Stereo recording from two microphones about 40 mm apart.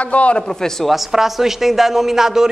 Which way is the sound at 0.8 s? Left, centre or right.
Centre.